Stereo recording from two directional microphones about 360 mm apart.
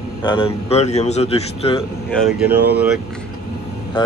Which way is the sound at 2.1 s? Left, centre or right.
Centre.